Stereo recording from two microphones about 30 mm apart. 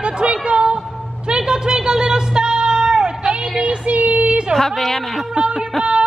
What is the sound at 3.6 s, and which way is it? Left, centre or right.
Child singing, right.